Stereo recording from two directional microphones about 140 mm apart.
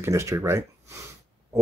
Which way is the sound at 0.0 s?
20° right (ahead or behind).